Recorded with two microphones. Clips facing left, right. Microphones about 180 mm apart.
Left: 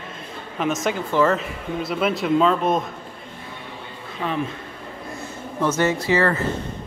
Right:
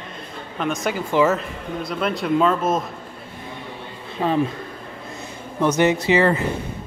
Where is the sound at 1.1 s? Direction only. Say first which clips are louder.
Right 1 dB; 10° right (ahead or behind).